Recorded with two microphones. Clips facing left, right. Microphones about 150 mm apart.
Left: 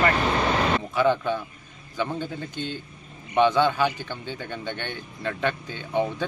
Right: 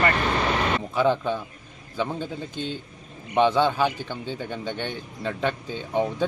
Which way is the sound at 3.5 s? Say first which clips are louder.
Even; 10° right (ahead or behind).